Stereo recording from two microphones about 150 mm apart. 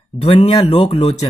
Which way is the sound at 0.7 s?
45° left (ahead or behind).